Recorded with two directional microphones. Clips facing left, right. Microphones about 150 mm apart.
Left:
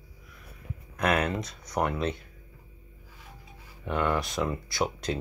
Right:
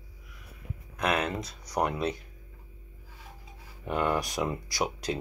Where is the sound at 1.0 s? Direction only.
Centre (ahead or behind).